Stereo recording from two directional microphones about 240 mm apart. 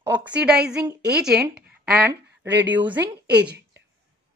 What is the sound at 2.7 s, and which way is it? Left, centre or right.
Speech, centre.